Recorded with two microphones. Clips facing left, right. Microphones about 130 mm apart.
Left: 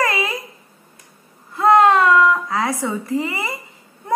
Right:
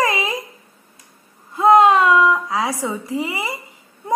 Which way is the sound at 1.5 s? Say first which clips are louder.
Right 1 dB; 15° right (ahead or behind).